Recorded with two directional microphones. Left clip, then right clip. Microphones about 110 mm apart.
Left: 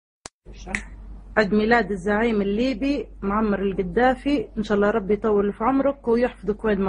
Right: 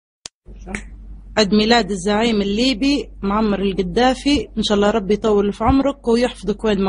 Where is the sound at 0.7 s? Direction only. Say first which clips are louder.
Left 1 dB; 15° right (ahead or behind).